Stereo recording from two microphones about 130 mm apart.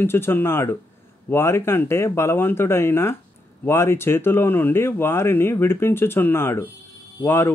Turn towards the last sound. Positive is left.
turn(degrees=20)  # may be behind; listen again after turning